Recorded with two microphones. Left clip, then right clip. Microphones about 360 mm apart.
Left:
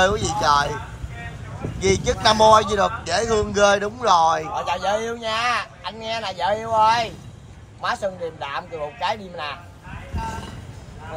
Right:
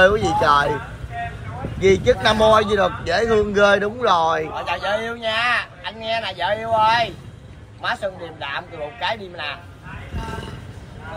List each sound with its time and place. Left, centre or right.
0.0 s a man's voice: centre
1.8 s a man's voice: centre
4.6 s speech: centre